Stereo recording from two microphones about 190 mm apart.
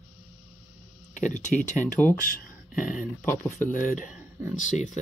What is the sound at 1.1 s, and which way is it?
Speech, 40° left (ahead or behind).